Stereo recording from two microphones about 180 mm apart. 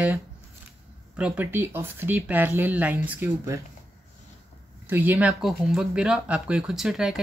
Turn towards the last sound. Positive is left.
turn(degrees=0)  # may be behind; listen again after turning